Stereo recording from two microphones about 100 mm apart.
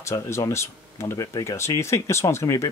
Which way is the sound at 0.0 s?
30° left (ahead or behind).